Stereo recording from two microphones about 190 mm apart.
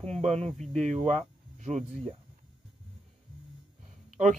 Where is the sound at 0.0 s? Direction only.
35° right (ahead or behind).